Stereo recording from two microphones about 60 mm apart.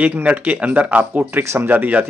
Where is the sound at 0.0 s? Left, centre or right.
Right.